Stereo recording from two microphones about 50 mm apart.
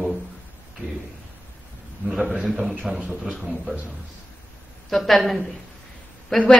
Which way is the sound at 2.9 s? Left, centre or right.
Centre.